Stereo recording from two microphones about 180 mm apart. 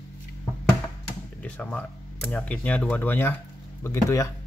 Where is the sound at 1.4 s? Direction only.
5° left (ahead or behind).